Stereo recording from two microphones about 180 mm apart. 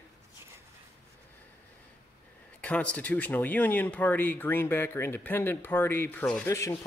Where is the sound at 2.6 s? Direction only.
5° left (ahead or behind).